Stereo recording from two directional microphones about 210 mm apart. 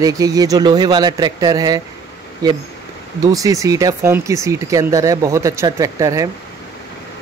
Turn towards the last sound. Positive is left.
turn(degrees=-15)  # may be behind; listen again after turning